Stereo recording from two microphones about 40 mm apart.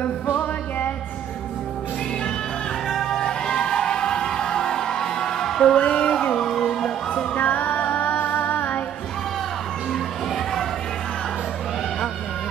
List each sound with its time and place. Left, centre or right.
0.4 s music: left
2.9 s music: centre
3.3 s music: centre
5.8 s a sound: left
7.3 s music: left